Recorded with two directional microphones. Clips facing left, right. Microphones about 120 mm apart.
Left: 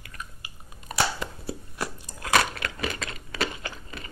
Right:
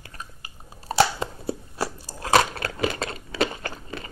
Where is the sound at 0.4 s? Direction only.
30° right (ahead or behind).